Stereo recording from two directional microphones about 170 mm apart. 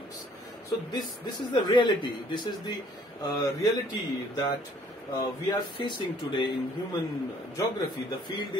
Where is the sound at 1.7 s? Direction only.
25° left (ahead or behind).